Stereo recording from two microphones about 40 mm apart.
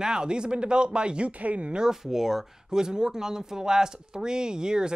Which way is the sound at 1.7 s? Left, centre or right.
Centre.